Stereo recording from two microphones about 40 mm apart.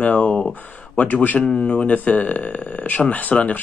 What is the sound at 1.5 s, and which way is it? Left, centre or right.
Speech, left.